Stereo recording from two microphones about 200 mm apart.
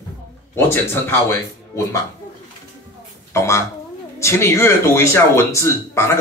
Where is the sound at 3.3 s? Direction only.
15° left (ahead or behind).